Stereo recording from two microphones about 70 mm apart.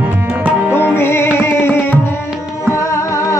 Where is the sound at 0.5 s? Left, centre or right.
Right.